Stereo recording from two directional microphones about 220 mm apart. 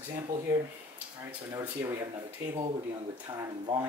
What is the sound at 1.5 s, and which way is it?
Speech, 15° right (ahead or behind).